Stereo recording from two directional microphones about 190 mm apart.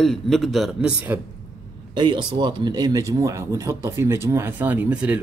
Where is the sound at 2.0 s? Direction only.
25° right (ahead or behind); by 5.2 s 10° right (ahead or behind).